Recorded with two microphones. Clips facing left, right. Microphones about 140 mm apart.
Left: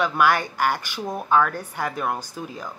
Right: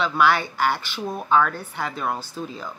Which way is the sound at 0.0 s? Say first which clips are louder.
Even; 15° left (ahead or behind).